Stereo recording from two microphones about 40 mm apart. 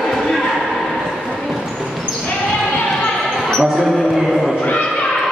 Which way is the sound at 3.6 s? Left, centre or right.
Centre.